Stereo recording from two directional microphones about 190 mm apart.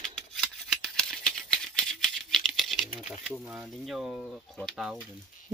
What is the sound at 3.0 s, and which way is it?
Speech, centre (ahead or behind).